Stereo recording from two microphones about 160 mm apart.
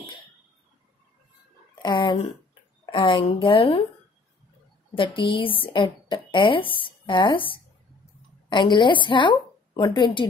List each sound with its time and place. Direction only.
1.8 s a sound: 25° left (ahead or behind)
2.8 s a woman's voice: 30° left (ahead or behind)
4.9 s a woman's voice: 30° left (ahead or behind)